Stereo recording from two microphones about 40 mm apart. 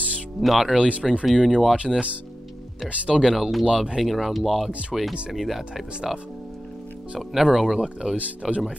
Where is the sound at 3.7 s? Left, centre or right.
Centre.